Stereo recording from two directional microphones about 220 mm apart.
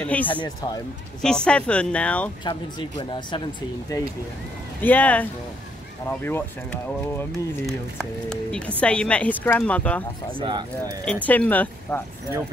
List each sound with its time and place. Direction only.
0.0 s speech: 5° left (ahead or behind)
0.3 s speech: 20° left (ahead or behind)
1.2 s speech: 5° left (ahead or behind)
2.4 s speech: 20° left (ahead or behind); by 10.0 s 5° left (ahead or behind)
11.2 s speech: 5° left (ahead or behind)